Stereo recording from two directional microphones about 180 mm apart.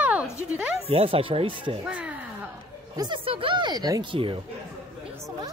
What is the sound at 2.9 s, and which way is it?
Speech, 25° right (ahead or behind).